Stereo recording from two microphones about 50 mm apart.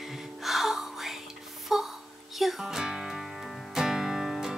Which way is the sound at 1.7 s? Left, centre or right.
Centre.